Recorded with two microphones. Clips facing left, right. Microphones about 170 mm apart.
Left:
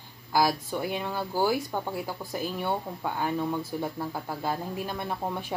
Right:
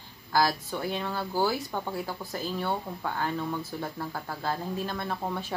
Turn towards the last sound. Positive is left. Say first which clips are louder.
# even
turn(degrees=15)  # may be behind; listen again after turning